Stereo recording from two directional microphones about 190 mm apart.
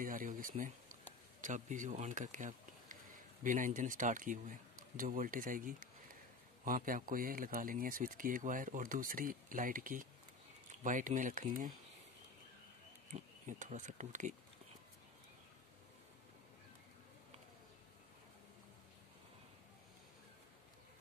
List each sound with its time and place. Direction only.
0.0 s a sound: 45° right (ahead or behind)
1.4 s speech: 40° right (ahead or behind)
13.1 s speech: 40° right (ahead or behind)